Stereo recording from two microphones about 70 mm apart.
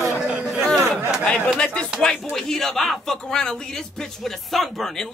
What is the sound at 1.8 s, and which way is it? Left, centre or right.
Speech, centre.